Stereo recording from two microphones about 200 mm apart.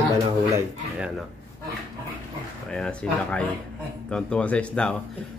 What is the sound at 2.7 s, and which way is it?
Speech, 5° left (ahead or behind).